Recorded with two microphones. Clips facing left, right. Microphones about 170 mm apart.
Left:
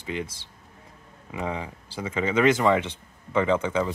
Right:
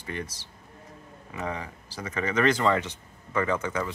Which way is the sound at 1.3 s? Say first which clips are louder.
Left 3 dB; 20° left (ahead or behind).